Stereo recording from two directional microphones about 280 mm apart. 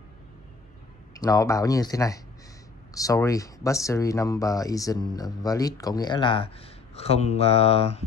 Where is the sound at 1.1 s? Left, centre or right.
Centre.